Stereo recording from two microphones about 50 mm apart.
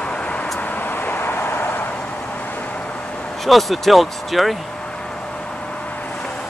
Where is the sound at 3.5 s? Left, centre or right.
Centre.